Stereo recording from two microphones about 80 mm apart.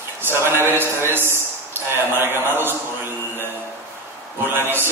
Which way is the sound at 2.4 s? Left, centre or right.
Right.